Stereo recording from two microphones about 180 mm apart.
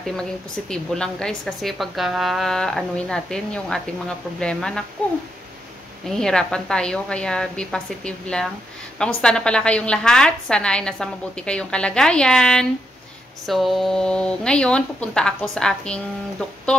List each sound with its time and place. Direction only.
0.0 s a woman's voice: 5° left (ahead or behind)
6.0 s a woman's voice: 5° left (ahead or behind)